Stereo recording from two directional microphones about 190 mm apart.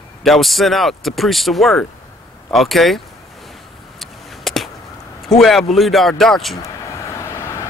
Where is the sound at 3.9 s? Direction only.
Centre (ahead or behind).